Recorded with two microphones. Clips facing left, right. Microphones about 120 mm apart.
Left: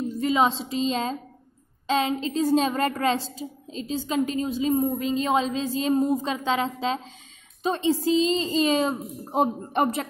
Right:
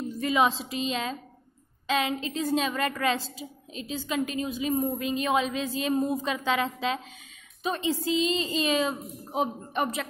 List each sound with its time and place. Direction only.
0.2 s a woman's voice: 30° left (ahead or behind); by 9.5 s 45° left (ahead or behind)